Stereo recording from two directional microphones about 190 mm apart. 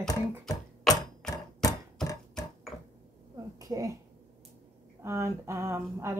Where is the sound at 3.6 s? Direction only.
20° right (ahead or behind).